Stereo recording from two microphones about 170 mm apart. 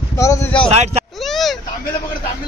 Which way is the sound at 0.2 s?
15° left (ahead or behind).